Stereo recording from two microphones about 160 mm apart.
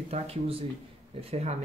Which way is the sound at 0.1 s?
35° right (ahead or behind).